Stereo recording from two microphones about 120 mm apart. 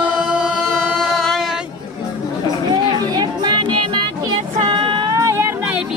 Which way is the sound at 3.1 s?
35° right (ahead or behind).